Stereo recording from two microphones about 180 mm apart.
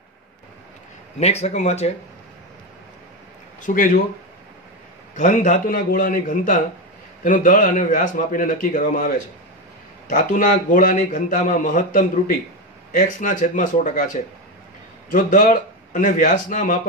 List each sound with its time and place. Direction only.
1.2 s speech: 35° left (ahead or behind)
3.6 s a man's voice: 50° left (ahead or behind)
5.1 s a man's voice: 45° left (ahead or behind)